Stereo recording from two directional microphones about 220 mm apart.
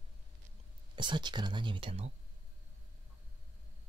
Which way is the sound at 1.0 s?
20° right (ahead or behind).